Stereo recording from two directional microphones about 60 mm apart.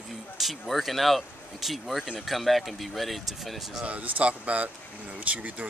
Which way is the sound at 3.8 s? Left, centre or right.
Right.